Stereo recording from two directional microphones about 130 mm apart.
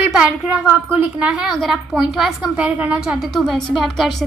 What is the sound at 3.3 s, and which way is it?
Speech, centre (ahead or behind).